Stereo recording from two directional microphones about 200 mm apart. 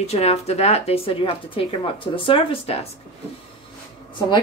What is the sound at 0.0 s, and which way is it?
A woman's voice, 30° left (ahead or behind).